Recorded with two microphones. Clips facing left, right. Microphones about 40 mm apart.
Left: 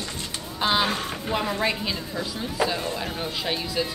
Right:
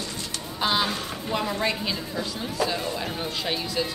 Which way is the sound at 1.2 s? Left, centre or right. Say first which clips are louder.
Left 1 dB; centre.